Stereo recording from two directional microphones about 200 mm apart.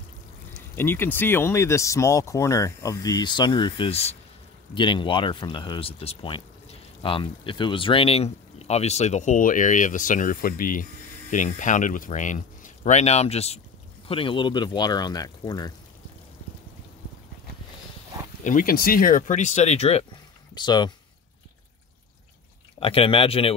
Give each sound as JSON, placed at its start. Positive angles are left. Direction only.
{"t": 0.7, "sound": "speech", "side_deg": 10}
{"t": 18.4, "sound": "speech", "side_deg": 40}
{"t": 22.8, "sound": "speech", "side_deg": 25}